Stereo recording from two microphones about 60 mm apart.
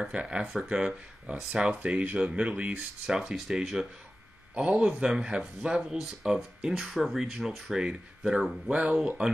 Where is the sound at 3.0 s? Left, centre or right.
Centre.